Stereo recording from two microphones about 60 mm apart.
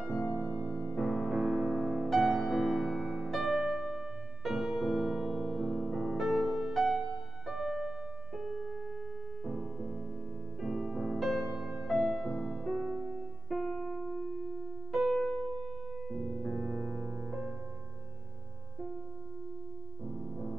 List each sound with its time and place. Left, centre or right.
0.1 s music: left
0.9 s music: centre
9.4 s music: centre
20.1 s music: centre